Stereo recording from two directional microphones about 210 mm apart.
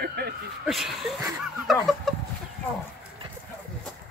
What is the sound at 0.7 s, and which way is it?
Chicken, centre (ahead or behind).